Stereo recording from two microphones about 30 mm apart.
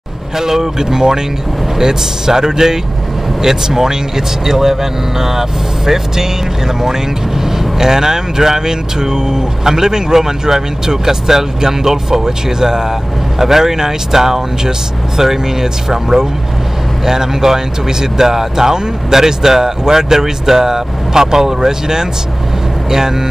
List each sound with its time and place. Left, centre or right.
0.4 s speech: centre